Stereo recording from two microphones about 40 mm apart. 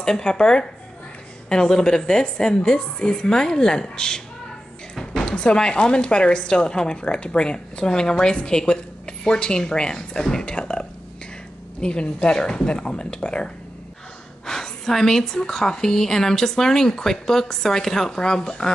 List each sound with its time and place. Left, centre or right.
0.0 s a woman's voice: centre
5.2 s a woman's voice: left
14.4 s a woman's voice: centre